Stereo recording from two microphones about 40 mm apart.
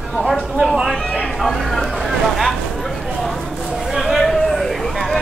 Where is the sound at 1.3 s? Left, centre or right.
Centre.